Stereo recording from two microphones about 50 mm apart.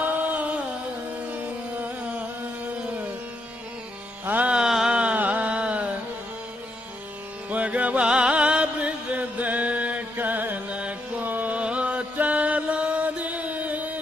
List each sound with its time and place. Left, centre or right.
0.0 s music: right
4.3 s music: right
4.6 s a sound: centre
4.9 s music: right
7.4 s music: right
10.1 s music: right
11.2 s music: right
11.5 s chant: right